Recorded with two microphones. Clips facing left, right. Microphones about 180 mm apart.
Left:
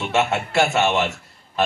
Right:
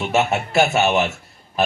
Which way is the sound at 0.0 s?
25° right (ahead or behind).